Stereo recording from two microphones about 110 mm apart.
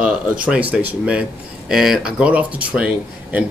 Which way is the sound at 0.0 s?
10° right (ahead or behind).